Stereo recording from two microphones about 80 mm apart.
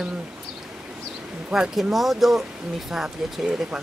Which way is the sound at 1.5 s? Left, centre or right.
Centre.